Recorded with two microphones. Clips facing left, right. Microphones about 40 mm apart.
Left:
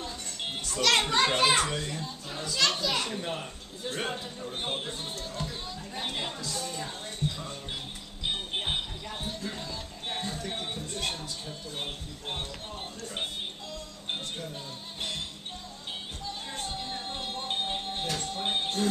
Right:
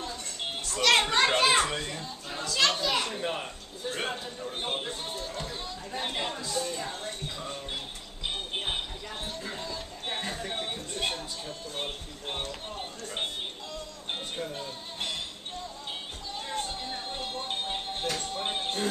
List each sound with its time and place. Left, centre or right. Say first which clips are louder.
0.7 s a child's voice: right 2 dB; centre
8.6 s music: left 1 dB; centre
9.4 s music: even; centre
10.4 s speech: right 1 dB; centre
14.4 s speech: right 4 dB; right
16.5 s music: right 3 dB; centre